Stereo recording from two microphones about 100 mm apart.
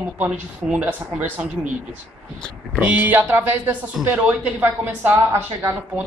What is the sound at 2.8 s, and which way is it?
Speech, 15° right (ahead or behind).